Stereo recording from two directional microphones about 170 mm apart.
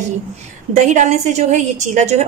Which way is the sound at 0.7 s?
45° right (ahead or behind).